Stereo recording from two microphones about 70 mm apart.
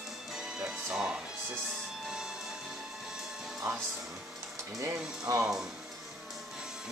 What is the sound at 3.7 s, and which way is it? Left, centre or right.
Speech, right.